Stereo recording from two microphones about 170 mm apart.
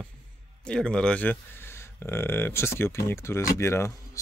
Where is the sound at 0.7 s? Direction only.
5° left (ahead or behind).